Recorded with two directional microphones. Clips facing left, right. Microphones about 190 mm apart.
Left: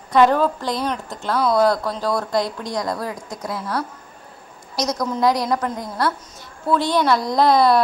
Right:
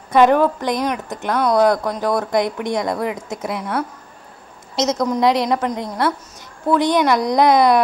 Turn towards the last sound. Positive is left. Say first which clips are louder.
# right 2 dB
turn(degrees=-20)  # may be behind; listen again after turning